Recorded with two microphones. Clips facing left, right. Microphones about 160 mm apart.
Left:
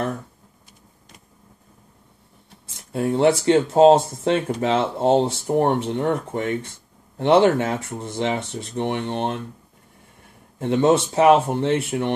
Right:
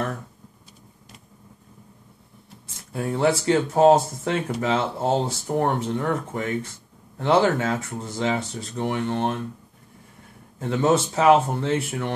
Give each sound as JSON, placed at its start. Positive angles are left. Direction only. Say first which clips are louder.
{"t": 2.9, "sound": "speech", "louder": "left 4 dB", "side_deg": 25}
{"t": 10.6, "sound": "speech", "louder": "left 3 dB", "side_deg": 25}